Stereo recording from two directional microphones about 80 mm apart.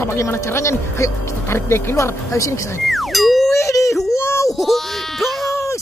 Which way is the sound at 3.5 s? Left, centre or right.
Left.